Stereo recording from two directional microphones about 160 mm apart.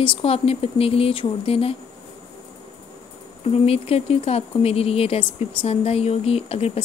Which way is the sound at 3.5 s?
40° left (ahead or behind).